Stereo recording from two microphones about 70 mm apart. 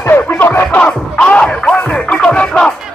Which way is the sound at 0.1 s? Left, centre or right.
Left.